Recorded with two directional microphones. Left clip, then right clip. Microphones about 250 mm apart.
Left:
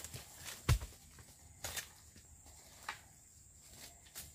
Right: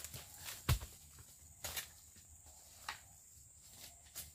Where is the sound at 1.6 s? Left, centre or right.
Centre.